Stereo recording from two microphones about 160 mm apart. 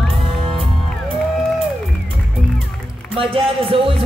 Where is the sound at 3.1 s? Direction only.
35° right (ahead or behind).